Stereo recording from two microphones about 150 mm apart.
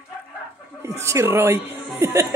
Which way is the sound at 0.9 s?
20° right (ahead or behind).